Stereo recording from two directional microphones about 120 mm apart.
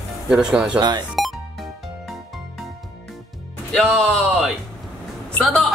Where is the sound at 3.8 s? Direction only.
5° left (ahead or behind).